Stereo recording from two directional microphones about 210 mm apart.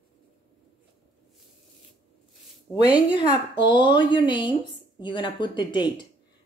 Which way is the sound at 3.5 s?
20° left (ahead or behind).